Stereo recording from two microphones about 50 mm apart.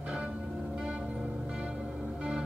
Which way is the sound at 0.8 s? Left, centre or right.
Centre.